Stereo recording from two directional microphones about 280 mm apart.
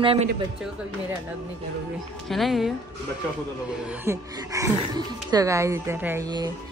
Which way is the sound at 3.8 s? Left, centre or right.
Centre.